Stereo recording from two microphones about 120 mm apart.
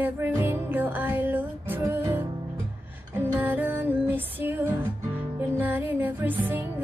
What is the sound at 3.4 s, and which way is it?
Music, 15° right (ahead or behind).